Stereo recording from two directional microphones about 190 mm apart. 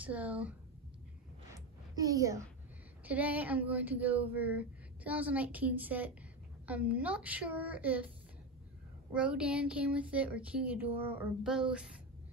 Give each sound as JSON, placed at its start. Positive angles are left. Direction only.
{"t": 0.0, "sound": "speech", "side_deg": -5}
{"t": 1.5, "sound": "a sound", "side_deg": -20}
{"t": 3.1, "sound": "speech", "side_deg": -10}
{"t": 9.1, "sound": "speech", "side_deg": -5}